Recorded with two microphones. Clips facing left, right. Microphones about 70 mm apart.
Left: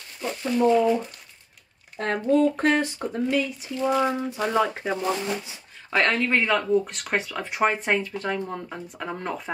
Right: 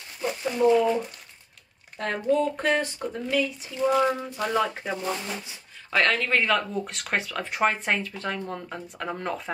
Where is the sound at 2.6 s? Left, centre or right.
Left.